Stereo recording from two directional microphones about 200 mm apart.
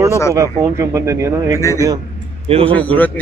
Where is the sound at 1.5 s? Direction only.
15° left (ahead or behind).